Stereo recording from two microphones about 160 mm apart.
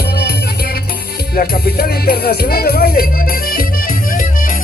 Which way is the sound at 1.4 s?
70° left (ahead or behind).